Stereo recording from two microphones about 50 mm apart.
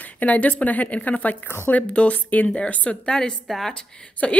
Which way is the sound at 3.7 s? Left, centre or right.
Centre.